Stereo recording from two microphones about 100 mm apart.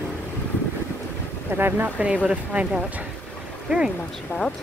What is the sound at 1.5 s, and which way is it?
Speech, 20° right (ahead or behind).